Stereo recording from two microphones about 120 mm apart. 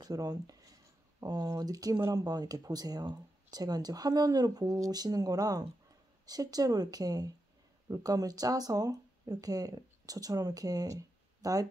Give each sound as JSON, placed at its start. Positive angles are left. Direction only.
{"t": 0.0, "sound": "speech", "side_deg": -30}